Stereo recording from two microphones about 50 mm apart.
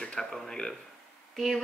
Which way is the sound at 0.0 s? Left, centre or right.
Centre.